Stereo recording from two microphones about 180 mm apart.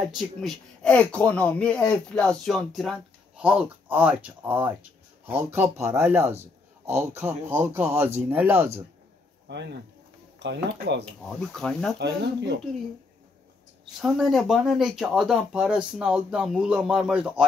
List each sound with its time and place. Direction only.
0.1 s a man's voice: centre (ahead or behind)
9.5 s speech: 75° right (ahead or behind)
11.2 s speech: centre (ahead or behind)
12.0 s speech: 75° right (ahead or behind)
14.0 s speech: centre (ahead or behind)